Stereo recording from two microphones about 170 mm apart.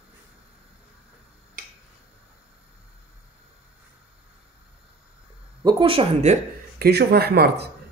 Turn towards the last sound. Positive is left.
turn(degrees=-70)  # may be behind; listen again after turning